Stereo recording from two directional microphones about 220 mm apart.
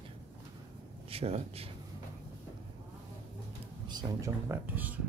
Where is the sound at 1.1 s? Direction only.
25° right (ahead or behind).